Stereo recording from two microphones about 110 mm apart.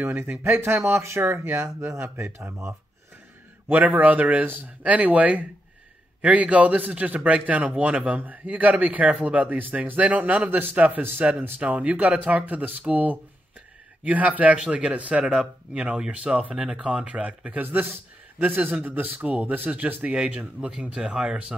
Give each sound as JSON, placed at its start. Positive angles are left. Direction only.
{"t": 0.0, "sound": "speech", "side_deg": -20}
{"t": 3.6, "sound": "a man's voice", "side_deg": -15}